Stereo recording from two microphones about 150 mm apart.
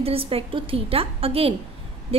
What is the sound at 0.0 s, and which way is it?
A woman's voice, 40° right (ahead or behind).